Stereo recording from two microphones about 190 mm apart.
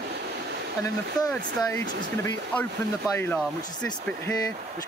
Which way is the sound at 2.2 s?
10° left (ahead or behind).